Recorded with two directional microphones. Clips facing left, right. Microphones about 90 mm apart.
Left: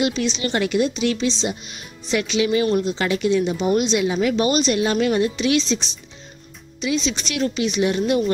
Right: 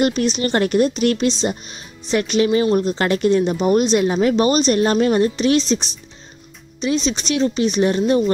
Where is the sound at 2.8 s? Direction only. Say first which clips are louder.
Right 3 dB; 50° right (ahead or behind).